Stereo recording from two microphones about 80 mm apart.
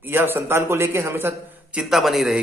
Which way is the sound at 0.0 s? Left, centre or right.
Right.